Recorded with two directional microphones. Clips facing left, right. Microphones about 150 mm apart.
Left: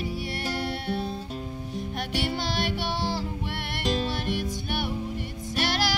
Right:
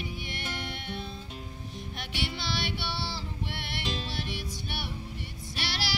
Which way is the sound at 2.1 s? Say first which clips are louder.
Left 4 dB; 45° left (ahead or behind).